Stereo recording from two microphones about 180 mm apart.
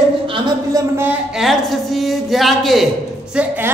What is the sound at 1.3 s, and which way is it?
A woman's voice, centre (ahead or behind).